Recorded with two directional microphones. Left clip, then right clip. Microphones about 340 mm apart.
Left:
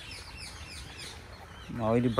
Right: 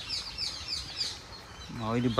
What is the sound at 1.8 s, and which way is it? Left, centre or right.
Speech, centre.